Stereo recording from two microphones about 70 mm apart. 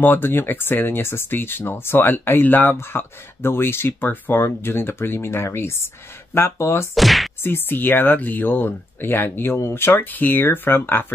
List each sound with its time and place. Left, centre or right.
0.0 s speech: left
7.0 s whip: centre
7.4 s speech: left